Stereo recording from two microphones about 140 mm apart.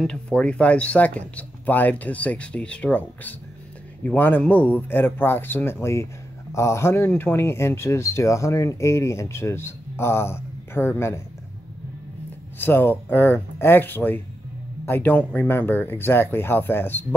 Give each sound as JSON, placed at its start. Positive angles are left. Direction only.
{"t": 0.0, "sound": "speech", "side_deg": 5}
{"t": 4.0, "sound": "speech", "side_deg": 10}
{"t": 12.5, "sound": "speech", "side_deg": 15}